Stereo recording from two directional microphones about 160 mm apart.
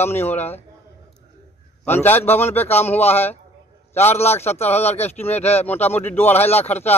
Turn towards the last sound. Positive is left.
turn(degrees=10)  # may be behind; listen again after turning